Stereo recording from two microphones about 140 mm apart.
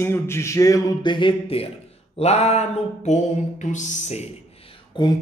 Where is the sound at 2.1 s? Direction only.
50° left (ahead or behind).